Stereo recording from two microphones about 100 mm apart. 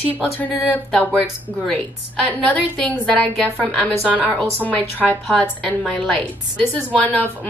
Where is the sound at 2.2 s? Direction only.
15° left (ahead or behind).